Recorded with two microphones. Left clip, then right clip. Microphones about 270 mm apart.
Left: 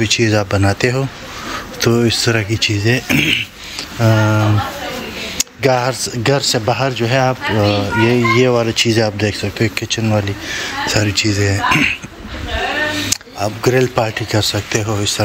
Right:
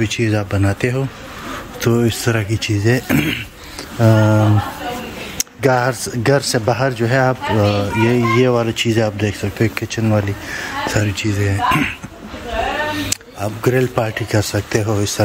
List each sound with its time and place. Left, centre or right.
0.0 s a child's voice: centre
5.4 s a sound: centre
6.2 s a child's voice: centre